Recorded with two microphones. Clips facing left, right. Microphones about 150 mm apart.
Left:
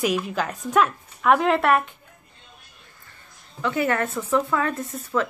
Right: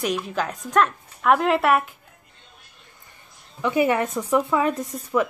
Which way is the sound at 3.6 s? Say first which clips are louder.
Right 3 dB; 15° right (ahead or behind).